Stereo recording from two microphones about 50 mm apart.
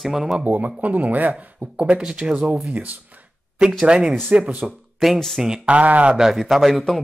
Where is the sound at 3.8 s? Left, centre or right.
Centre.